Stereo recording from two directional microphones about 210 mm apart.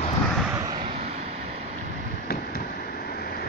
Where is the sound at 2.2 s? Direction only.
45° left (ahead or behind).